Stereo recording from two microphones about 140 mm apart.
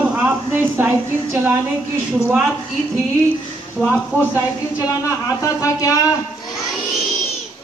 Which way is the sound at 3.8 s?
Centre (ahead or behind).